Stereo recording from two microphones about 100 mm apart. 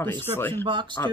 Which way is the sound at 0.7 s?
55° right (ahead or behind).